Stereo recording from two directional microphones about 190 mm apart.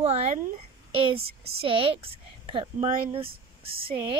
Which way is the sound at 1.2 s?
55° right (ahead or behind).